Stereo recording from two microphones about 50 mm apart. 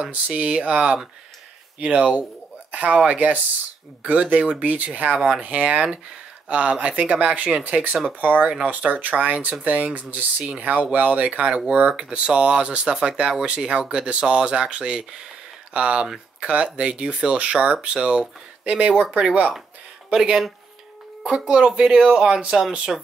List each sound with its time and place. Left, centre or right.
0.1 s speech: right
12.0 s a man's voice: right
21.8 s a man's voice: centre